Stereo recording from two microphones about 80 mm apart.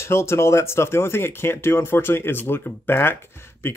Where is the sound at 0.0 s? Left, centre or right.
Left.